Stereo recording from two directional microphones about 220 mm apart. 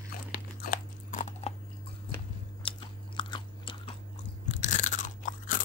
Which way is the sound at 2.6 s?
20° left (ahead or behind).